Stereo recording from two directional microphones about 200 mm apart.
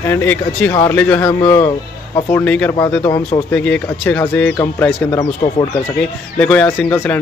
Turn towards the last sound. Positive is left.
turn(degrees=10)  # may be behind; listen again after turning